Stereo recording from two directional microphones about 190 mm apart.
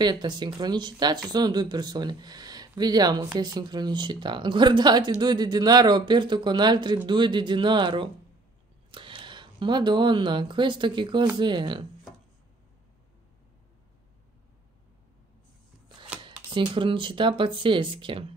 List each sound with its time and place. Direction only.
0.0 s speech: 20° right (ahead or behind)
16.4 s speech: 25° right (ahead or behind)